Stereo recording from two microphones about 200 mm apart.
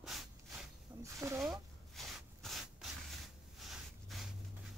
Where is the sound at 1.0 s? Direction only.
15° right (ahead or behind).